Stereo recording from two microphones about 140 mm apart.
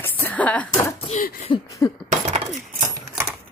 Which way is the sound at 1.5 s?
35° left (ahead or behind).